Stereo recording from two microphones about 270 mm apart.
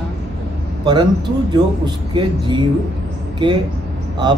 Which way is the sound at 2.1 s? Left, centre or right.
Centre.